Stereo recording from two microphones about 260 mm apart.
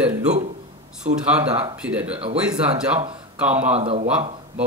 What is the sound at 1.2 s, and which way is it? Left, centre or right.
Speech, centre.